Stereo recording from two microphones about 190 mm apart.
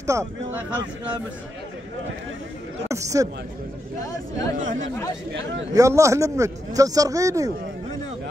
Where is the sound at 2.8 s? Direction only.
15° right (ahead or behind).